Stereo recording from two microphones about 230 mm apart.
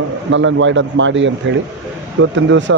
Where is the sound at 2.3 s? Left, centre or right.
Right.